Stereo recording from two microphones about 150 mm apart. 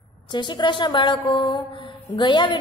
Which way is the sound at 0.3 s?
30° left (ahead or behind).